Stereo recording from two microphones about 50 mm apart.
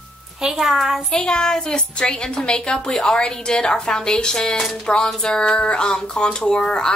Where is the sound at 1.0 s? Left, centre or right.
Centre.